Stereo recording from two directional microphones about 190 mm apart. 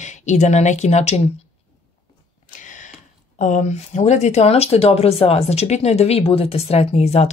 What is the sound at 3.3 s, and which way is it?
Speech, 40° left (ahead or behind).